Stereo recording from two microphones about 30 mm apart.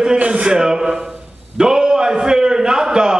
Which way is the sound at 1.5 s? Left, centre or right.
Right.